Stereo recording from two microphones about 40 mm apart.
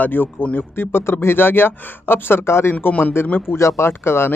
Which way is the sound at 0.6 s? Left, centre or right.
Left.